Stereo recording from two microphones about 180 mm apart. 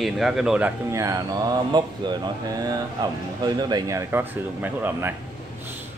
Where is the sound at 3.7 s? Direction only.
20° right (ahead or behind).